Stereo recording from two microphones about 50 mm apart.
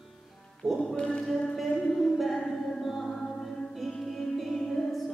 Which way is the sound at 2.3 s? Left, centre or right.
Centre.